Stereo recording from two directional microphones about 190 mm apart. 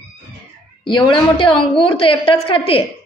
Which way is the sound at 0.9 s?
25° left (ahead or behind).